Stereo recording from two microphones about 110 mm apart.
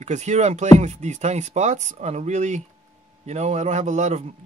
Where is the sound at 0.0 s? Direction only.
90° right.